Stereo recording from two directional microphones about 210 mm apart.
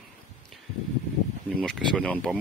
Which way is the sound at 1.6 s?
5° left (ahead or behind).